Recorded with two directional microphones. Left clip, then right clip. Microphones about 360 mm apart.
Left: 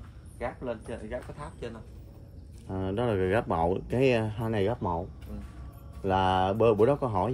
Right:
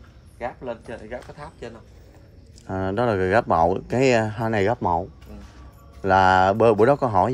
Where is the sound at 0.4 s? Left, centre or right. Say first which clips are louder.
Right 4 dB; right.